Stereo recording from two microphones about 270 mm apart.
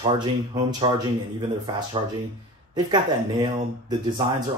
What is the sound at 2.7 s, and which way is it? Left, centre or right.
Speech, centre.